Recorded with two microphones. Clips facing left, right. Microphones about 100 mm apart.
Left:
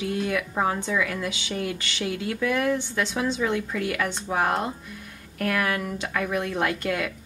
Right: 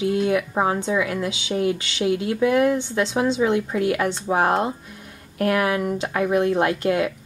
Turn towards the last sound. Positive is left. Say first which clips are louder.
# right 6 dB
turn(degrees=-25)  # may be behind; listen again after turning